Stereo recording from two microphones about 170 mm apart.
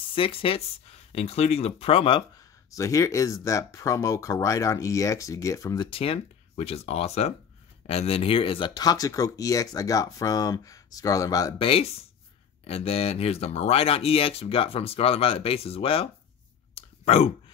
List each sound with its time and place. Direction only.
0.1 s speech: 30° left (ahead or behind)
2.7 s speech: 20° left (ahead or behind)
5.9 s speech: 35° left (ahead or behind)
11.5 s speech: 35° left (ahead or behind)
16.7 s clicking: 40° left (ahead or behind)